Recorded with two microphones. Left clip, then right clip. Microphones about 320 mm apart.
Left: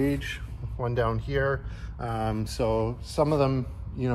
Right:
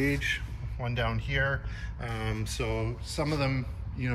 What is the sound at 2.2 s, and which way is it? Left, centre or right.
A man's voice, centre.